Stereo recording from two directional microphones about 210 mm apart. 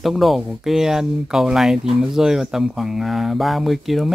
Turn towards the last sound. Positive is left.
turn(degrees=0)  # may be behind; listen again after turning